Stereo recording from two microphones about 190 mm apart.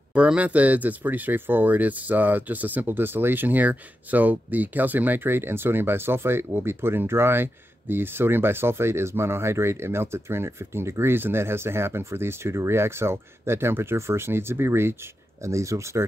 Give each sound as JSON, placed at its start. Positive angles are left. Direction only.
{"t": 0.1, "sound": "speech", "side_deg": -5}